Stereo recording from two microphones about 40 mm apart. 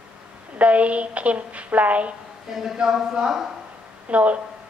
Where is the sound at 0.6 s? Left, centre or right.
Right.